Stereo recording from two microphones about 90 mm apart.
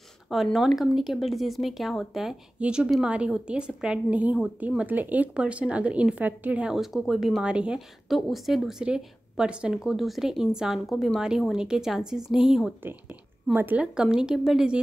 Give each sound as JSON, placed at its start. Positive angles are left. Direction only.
{"t": 0.3, "sound": "a woman's voice", "side_deg": 0}
{"t": 2.6, "sound": "a woman's voice", "side_deg": -15}
{"t": 13.5, "sound": "speech", "side_deg": -20}
{"t": 13.9, "sound": "a woman's voice", "side_deg": -10}